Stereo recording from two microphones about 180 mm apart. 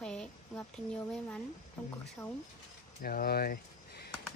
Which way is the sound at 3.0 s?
55° left (ahead or behind).